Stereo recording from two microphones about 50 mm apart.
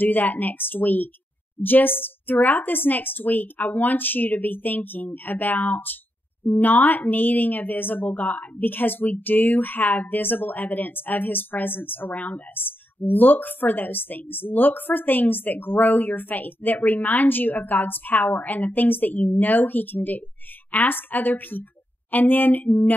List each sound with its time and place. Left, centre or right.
0.0 s a woman's voice: left
12.2 s speech: left
12.5 s a woman's voice: left